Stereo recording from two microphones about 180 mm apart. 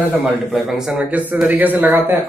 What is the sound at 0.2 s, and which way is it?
A man's voice, centre (ahead or behind).